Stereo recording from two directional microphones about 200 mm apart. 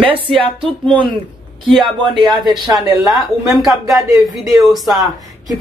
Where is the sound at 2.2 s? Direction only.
Centre (ahead or behind).